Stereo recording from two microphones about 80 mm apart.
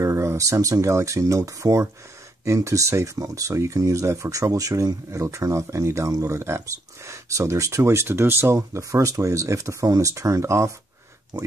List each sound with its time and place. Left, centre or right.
0.0 s speech: right